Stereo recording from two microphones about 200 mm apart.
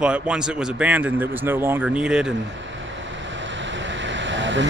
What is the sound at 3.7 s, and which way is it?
Vehicle, 65° right (ahead or behind).